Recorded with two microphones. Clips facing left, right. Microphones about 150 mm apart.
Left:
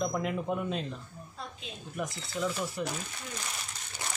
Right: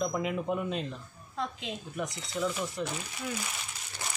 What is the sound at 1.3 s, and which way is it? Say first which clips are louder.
Speech: right 9 dB; 90° right.